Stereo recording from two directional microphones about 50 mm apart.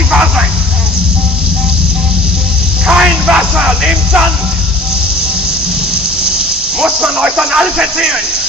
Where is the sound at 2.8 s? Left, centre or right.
Right.